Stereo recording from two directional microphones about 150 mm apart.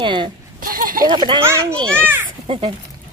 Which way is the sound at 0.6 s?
65° right (ahead or behind).